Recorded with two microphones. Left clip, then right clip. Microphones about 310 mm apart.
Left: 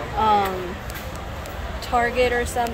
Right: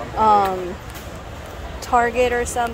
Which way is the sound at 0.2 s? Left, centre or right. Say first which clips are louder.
Right 4 dB; centre.